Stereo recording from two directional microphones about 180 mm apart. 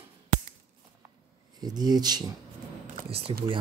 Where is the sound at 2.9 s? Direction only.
35° right (ahead or behind).